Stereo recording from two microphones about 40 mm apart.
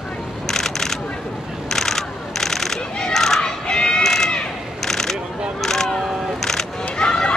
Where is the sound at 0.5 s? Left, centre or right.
Centre.